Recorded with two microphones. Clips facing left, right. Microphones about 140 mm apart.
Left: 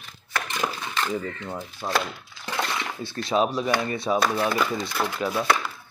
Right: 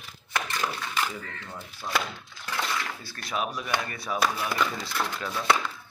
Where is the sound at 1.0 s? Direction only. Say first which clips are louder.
Left 2 dB; 10° right (ahead or behind).